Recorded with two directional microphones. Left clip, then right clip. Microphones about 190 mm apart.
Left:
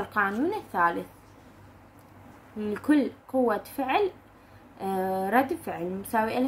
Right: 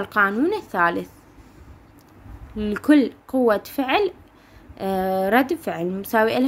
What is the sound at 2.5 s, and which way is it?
A woman's voice, 50° right (ahead or behind).